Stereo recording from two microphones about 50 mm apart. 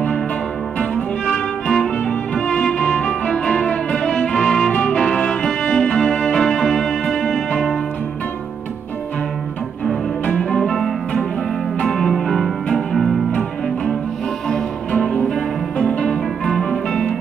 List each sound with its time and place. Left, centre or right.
1.2 s music: centre
10.5 s music: centre
14.5 s music: centre